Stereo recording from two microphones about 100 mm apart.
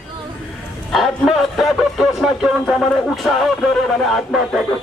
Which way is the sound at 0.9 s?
Centre (ahead or behind).